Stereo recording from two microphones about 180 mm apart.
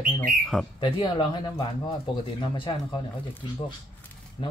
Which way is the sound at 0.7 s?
25° left (ahead or behind).